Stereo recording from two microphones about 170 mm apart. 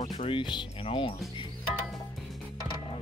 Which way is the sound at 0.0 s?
35° left (ahead or behind).